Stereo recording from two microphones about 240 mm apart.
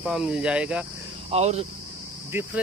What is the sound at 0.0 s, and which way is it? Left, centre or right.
Speech, centre.